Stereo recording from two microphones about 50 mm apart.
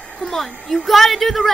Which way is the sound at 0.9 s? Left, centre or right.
Centre.